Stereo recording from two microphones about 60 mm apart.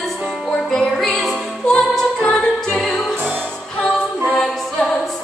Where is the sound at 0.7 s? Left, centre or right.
Centre.